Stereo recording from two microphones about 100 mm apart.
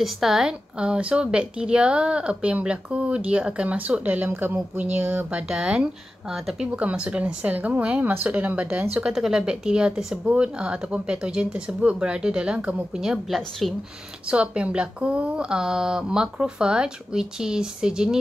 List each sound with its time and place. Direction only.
0.0 s speech: 5° right (ahead or behind)
6.7 s speech: 15° right (ahead or behind)
8.9 s speech: 5° right (ahead or behind)
14.3 s speech: 10° right (ahead or behind)